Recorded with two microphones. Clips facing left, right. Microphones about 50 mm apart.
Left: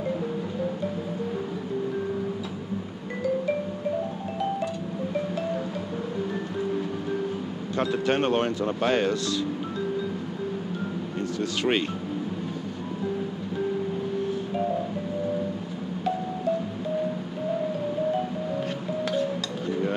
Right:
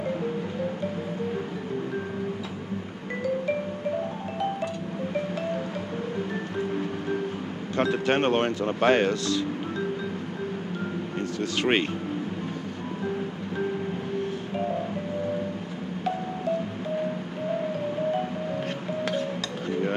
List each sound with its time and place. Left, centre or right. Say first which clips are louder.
5.1 s music: even; right
11.1 s a sound: even; right
13.9 s music: left 2 dB; right
16.1 s music: left 1 dB; right